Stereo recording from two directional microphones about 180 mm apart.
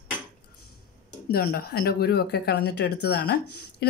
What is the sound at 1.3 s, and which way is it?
A woman's voice, 60° left (ahead or behind).